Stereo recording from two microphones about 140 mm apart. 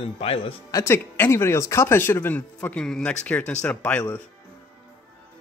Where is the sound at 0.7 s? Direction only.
20° left (ahead or behind).